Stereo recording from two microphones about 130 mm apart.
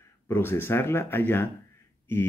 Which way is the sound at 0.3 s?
15° left (ahead or behind).